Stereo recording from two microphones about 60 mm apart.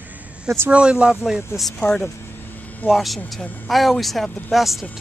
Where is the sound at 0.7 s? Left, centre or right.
Centre.